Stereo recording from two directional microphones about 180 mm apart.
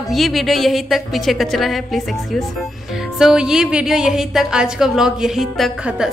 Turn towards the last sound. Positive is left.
turn(degrees=-5)  # may be behind; listen again after turning